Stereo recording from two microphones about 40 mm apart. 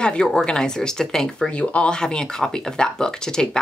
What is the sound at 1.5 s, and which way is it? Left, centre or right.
Speech, left.